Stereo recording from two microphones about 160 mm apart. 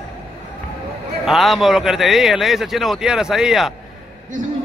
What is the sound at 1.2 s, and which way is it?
A man's voice, centre (ahead or behind).